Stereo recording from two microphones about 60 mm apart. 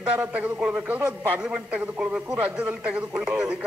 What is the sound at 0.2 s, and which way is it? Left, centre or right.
A man's voice, right.